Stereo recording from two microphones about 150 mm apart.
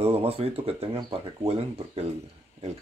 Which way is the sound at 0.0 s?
40° right (ahead or behind).